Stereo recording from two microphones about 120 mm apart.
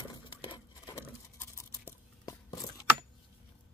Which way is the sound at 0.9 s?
25° left (ahead or behind).